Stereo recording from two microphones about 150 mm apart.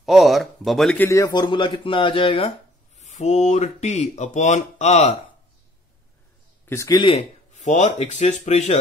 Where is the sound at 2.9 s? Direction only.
50° left (ahead or behind).